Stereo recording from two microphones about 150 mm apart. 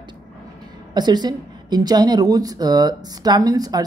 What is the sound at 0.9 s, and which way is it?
A woman's voice, 30° right (ahead or behind).